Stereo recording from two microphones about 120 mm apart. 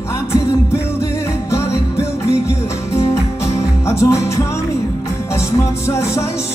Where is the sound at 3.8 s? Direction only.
25° left (ahead or behind).